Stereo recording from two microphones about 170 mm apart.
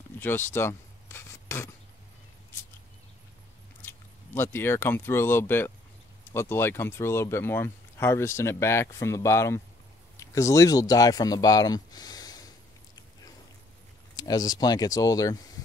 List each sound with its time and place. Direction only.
0.2 s filing: 15° left (ahead or behind)
3.8 s speech: 15° left (ahead or behind)
14.1 s speech: 20° left (ahead or behind)